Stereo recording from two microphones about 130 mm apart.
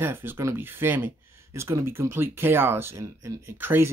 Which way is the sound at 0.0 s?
15° right (ahead or behind).